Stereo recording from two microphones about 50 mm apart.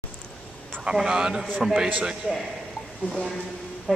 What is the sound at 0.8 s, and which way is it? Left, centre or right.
Speech, centre.